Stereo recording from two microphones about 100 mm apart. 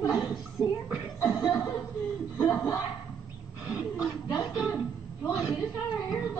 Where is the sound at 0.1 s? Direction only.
45° left (ahead or behind).